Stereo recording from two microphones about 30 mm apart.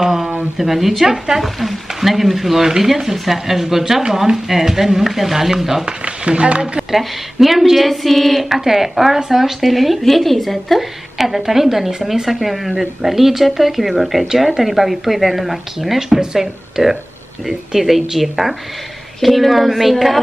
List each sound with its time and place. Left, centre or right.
0.0 s a sound: centre
0.6 s speech: centre
1.4 s a woman's voice: centre
5.9 s speech: right
6.9 s a woman's voice: centre
10.8 s a woman's voice: centre
16.0 s speech: right
16.3 s a woman's voice: centre